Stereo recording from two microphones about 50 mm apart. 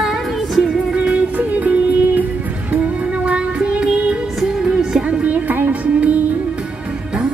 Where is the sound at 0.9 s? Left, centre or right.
Right.